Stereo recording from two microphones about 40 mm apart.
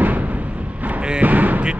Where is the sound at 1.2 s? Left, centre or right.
Right.